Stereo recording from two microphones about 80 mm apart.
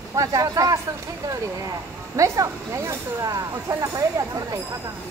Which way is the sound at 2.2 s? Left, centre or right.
Right.